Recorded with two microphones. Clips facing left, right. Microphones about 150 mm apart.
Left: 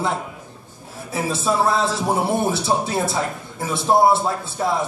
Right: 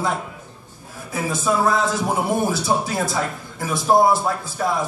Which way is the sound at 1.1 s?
30° left (ahead or behind).